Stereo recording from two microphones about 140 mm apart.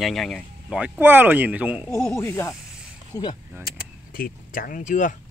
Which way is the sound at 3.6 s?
90° left.